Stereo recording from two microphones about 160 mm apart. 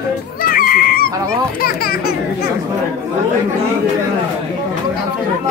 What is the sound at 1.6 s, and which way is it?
Speech, 70° left (ahead or behind).